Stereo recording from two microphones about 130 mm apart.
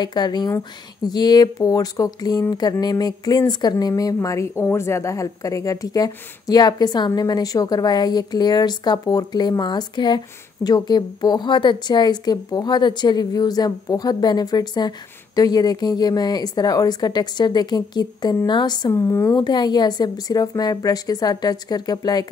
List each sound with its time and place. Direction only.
0.0 s a woman's voice: 35° left (ahead or behind)
18.9 s speech: 20° left (ahead or behind)
19.3 s a woman's voice: 35° left (ahead or behind)